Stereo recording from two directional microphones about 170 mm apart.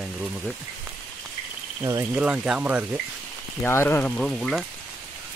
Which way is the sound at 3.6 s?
15° left (ahead or behind).